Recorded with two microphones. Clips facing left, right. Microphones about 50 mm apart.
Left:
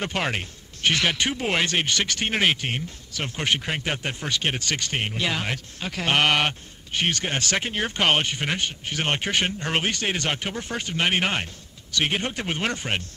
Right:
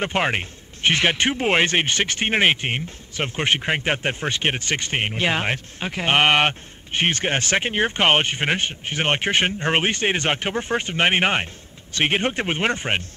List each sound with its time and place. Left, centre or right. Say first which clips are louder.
0.0 s speech: right 5 dB; right